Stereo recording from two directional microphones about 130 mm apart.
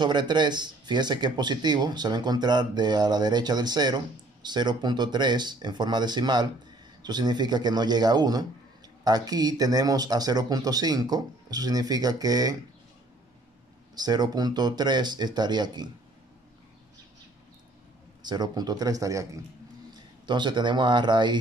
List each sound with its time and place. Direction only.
0.0 s speech: 35° right (ahead or behind)
13.9 s speech: 30° right (ahead or behind)
18.2 s speech: 35° right (ahead or behind)
20.2 s speech: 35° right (ahead or behind)